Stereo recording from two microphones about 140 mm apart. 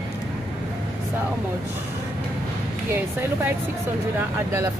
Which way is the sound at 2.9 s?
15° right (ahead or behind).